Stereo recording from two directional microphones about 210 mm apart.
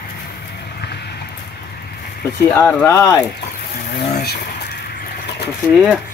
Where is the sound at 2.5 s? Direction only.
10° left (ahead or behind).